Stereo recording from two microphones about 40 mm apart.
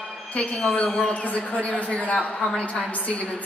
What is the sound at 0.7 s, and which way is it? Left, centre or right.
A man's voice, left.